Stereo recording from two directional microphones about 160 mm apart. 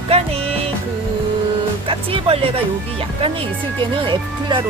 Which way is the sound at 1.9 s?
35° right (ahead or behind).